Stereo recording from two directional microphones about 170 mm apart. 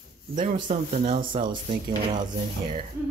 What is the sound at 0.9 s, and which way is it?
Speech, 45° right (ahead or behind).